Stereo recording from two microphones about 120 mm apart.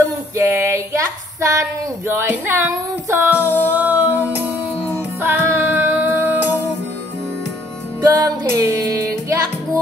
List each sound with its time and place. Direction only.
0.4 s a sound: 25° right (ahead or behind)
3.3 s music: 15° right (ahead or behind)
8.1 s music: 30° right (ahead or behind)